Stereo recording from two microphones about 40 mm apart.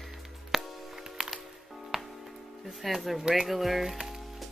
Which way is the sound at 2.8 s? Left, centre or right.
Centre.